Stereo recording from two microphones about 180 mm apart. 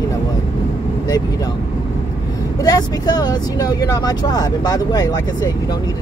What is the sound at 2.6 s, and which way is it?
Speech, 20° left (ahead or behind).